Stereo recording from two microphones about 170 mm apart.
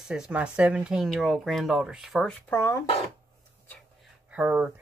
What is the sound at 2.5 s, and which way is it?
Speech, 15° left (ahead or behind).